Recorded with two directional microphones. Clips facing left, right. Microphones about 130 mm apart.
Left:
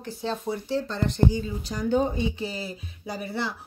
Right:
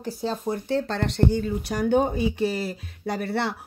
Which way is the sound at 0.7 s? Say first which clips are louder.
Right 2 dB; 70° right (ahead or behind).